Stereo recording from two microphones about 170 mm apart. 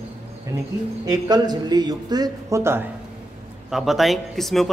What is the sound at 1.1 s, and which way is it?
Speech, 25° right (ahead or behind).